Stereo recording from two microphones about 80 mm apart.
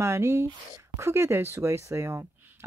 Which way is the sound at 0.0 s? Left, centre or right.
Right.